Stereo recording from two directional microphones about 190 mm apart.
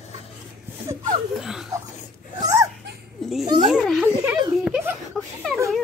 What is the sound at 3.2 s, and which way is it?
Children playing, centre (ahead or behind).